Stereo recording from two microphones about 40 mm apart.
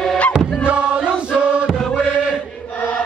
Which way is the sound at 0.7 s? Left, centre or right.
Right.